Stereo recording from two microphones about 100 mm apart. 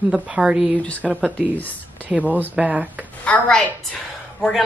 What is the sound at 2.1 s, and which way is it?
Speech, 15° right (ahead or behind).